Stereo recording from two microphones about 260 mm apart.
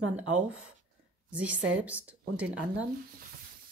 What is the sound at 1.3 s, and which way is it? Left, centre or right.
Speech, centre.